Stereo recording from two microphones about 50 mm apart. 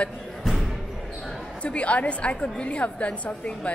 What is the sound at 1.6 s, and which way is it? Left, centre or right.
A woman's voice, left.